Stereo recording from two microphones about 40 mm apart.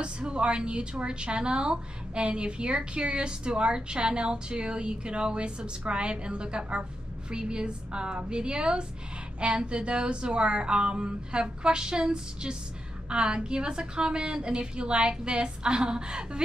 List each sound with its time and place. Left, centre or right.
0.0 s a woman's voice: right